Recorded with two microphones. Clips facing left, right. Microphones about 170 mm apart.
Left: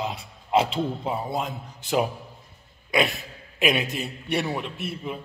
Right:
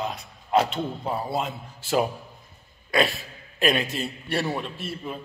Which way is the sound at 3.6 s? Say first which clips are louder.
Even; 15° left (ahead or behind).